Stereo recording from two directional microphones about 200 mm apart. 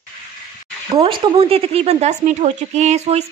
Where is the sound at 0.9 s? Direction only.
25° right (ahead or behind).